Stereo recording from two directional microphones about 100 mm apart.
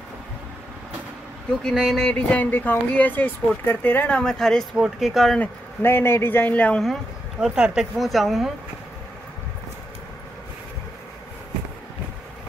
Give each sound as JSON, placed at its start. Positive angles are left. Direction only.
{"t": 1.6, "sound": "speech", "side_deg": 0}
{"t": 4.7, "sound": "speech", "side_deg": -5}
{"t": 5.4, "sound": "speech", "side_deg": 20}
{"t": 6.8, "sound": "speech", "side_deg": 0}